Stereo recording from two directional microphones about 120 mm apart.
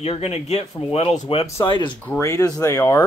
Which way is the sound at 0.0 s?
55° left (ahead or behind).